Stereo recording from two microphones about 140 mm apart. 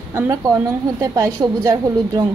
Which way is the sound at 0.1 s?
20° right (ahead or behind).